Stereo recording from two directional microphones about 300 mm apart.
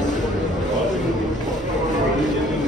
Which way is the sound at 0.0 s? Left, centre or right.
Left.